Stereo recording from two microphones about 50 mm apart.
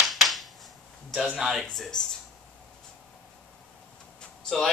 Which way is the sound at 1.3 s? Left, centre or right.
Centre.